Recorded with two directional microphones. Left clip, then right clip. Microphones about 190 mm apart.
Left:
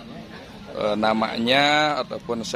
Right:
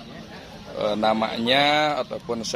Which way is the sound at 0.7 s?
10° left (ahead or behind).